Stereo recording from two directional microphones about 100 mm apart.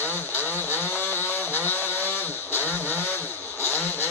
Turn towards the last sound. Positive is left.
turn(degrees=20)  # may be behind; listen again after turning